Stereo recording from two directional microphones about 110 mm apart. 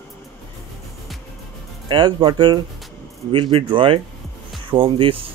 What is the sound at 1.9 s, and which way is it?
Speech, 45° right (ahead or behind).